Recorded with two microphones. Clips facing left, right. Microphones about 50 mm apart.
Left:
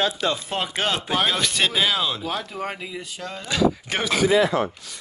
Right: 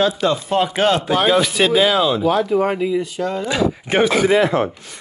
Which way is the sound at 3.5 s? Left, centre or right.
Centre.